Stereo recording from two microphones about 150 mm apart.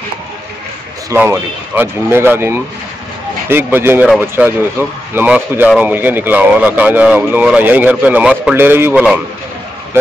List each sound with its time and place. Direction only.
1.1 s speech: 15° right (ahead or behind)